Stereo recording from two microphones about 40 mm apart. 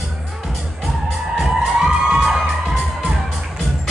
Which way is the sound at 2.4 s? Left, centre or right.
Centre.